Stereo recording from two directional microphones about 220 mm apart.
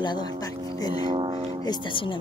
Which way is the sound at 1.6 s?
20° left (ahead or behind).